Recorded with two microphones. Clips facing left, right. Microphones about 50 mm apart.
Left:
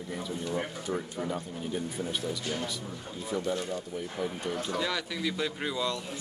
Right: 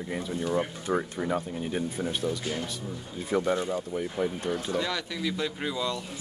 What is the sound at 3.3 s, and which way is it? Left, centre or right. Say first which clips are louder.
Speech: right 5 dB; right.